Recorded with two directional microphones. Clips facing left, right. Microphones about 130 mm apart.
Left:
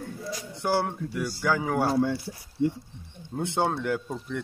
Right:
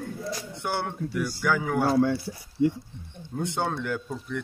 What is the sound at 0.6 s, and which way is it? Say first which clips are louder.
A man's voice: left 4 dB; 30° left (ahead or behind).